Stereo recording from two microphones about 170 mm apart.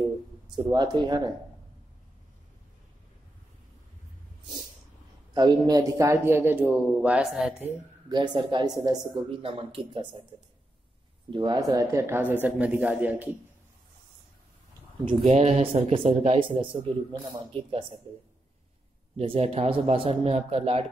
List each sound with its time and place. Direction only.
0.7 s speech: 25° right (ahead or behind)
5.3 s a man's voice: 25° right (ahead or behind); by 7.7 s 5° right (ahead or behind)
8.1 s speech: 25° right (ahead or behind)
11.2 s a man's voice: 30° right (ahead or behind); by 13.4 s 10° right (ahead or behind)
15.0 s speech: 40° right (ahead or behind)
19.1 s speech: 35° right (ahead or behind)